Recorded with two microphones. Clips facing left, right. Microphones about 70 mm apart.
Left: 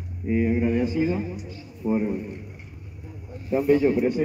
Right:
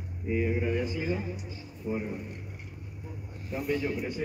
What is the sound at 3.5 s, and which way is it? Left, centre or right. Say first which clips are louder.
Speech: left 11 dB; left.